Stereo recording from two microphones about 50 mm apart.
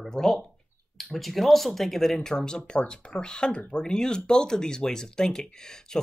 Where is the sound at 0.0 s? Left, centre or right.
Centre.